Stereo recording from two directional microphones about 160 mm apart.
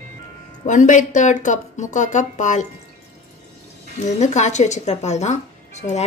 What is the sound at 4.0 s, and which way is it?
Speech, 45° left (ahead or behind).